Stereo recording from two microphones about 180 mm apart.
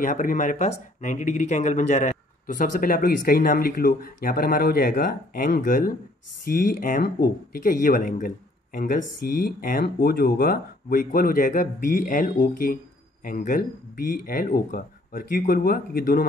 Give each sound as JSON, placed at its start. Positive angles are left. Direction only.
{"t": 0.0, "sound": "speech", "side_deg": 45}